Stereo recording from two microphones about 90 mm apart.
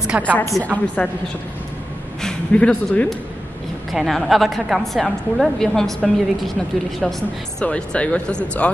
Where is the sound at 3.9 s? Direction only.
Centre (ahead or behind).